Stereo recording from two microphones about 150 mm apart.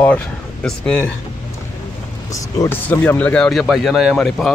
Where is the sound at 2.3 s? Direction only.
20° left (ahead or behind).